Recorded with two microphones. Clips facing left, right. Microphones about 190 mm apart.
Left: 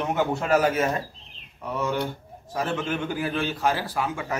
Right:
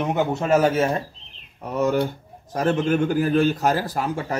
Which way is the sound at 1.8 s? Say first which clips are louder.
Right 7 dB; 40° right (ahead or behind).